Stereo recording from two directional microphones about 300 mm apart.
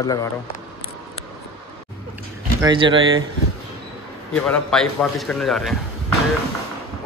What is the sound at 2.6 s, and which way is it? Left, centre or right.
Speech, centre.